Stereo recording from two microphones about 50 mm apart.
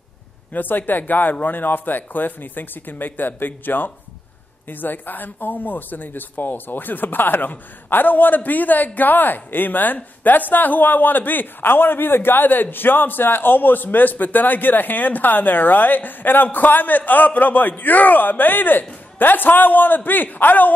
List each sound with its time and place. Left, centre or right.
0.5 s speech: left